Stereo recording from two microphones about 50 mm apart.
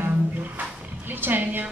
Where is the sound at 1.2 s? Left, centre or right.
Right.